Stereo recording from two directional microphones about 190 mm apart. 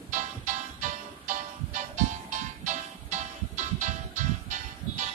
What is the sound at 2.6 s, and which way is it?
Music, 40° right (ahead or behind).